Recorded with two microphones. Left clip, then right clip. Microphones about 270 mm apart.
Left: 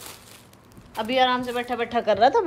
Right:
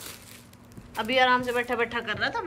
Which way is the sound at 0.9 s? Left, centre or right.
Centre.